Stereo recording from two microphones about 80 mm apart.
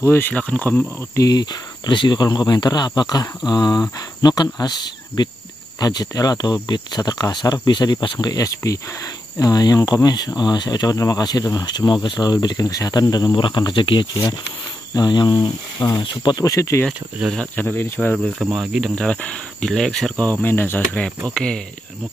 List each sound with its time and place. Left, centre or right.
0.0 s speech: left
0.3 s speech: centre
1.1 s speech: left
5.8 s speech: left
13.4 s speech: left
15.0 s speech: left
16.0 s speech: left
16.4 s speech: left
17.6 s cricket: left
18.4 s cricket: centre
18.9 s speech: centre
20.4 s cricket: left
21.3 s speech: centre